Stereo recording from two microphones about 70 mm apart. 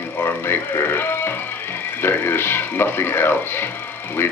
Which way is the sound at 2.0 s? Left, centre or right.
Left.